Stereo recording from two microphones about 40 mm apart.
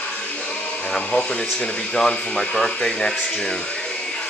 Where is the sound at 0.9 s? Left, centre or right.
Left.